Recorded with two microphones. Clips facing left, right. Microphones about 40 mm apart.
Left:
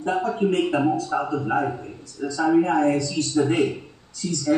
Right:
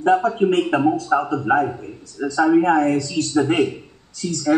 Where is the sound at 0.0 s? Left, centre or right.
Right.